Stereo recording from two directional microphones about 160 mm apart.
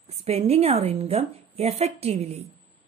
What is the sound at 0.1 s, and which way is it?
A woman's voice, 40° right (ahead or behind).